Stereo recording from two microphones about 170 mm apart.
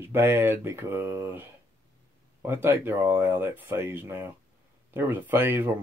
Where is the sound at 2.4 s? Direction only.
10° right (ahead or behind).